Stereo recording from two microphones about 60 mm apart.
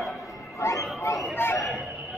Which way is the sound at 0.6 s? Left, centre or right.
Left.